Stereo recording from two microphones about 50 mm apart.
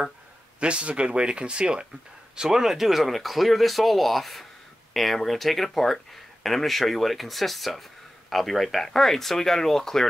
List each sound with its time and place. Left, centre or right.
0.6 s speech: right; by 10.0 s centre